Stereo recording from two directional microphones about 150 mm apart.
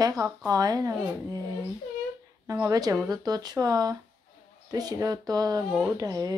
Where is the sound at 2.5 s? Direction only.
25° right (ahead or behind).